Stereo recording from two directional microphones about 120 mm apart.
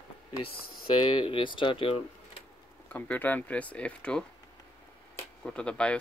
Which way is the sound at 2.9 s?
15° left (ahead or behind).